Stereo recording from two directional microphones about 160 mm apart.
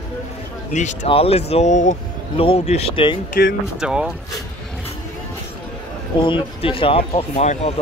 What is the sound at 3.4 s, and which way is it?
Speech, 70° left (ahead or behind).